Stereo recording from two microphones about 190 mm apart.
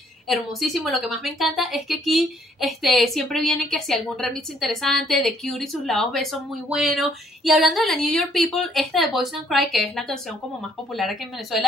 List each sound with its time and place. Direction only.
0.3 s a woman's voice: centre (ahead or behind)